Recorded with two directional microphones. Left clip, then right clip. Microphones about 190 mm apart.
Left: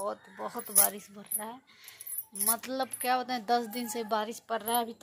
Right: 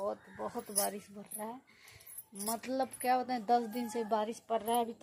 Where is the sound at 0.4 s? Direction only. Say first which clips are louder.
Left 2 dB; 20° left (ahead or behind).